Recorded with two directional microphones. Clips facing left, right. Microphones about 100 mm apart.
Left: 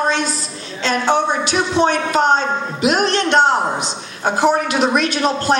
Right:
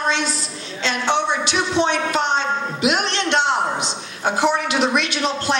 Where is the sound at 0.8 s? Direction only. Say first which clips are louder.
Left 4 dB; 45° left (ahead or behind).